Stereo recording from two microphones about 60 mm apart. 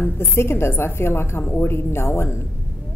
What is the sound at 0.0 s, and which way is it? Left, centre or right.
A woman's voice, left.